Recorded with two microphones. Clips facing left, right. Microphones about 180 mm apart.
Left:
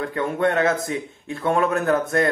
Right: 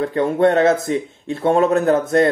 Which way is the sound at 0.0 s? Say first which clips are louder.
Right 6 dB; 30° right (ahead or behind).